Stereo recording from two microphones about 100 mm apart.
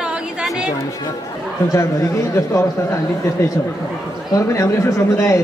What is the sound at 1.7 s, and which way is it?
Speech, 30° left (ahead or behind).